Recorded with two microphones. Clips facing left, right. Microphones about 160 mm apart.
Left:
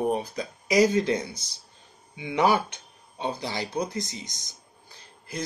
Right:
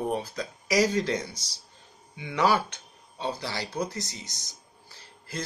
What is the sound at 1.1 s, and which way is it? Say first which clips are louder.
Speech: left 3 dB; 55° left (ahead or behind).